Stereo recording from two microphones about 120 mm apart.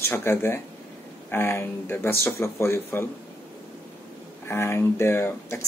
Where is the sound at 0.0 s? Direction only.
20° left (ahead or behind).